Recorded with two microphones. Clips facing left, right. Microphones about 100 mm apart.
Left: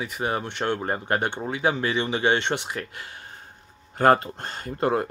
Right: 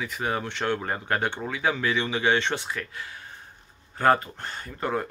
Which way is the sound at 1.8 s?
45° left (ahead or behind).